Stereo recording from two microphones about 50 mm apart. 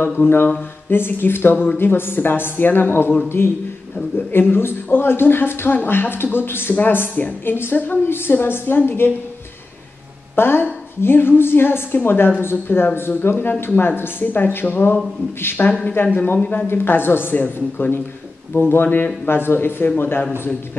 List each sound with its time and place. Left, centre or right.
0.3 s speech: left
10.3 s speech: left